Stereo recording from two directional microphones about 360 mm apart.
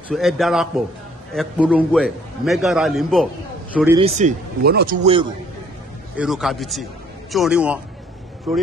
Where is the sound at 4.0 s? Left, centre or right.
Centre.